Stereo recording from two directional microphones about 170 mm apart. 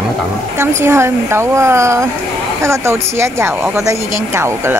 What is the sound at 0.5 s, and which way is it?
A woman's voice, 15° right (ahead or behind).